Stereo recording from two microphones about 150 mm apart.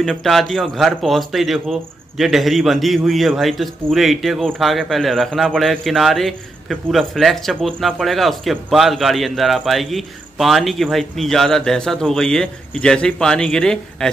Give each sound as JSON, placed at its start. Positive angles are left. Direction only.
{"t": 0.0, "sound": "speech", "side_deg": 0}